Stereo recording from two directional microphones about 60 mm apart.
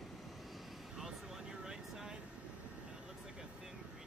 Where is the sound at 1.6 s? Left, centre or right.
Centre.